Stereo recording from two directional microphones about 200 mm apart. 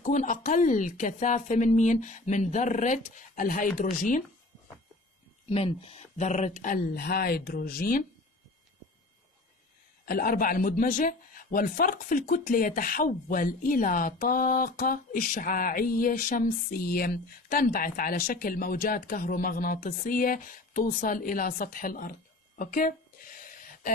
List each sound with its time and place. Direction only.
0.0 s speech: 35° left (ahead or behind)
5.5 s speech: 30° left (ahead or behind); by 8.0 s 45° left (ahead or behind)
10.0 s a man's voice: 45° left (ahead or behind)